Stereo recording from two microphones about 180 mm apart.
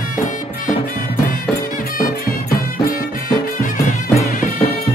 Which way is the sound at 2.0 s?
55° left (ahead or behind).